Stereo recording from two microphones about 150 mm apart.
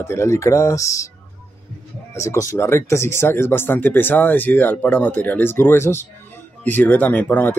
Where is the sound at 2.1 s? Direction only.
20° left (ahead or behind).